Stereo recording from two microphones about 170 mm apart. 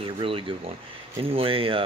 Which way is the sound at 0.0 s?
30° right (ahead or behind).